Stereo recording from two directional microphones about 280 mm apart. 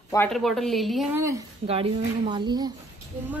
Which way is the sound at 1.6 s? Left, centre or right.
Right.